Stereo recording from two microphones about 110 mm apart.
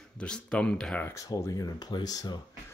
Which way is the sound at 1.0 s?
30° left (ahead or behind).